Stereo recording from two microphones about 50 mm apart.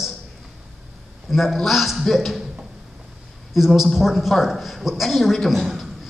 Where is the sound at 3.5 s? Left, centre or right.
Centre.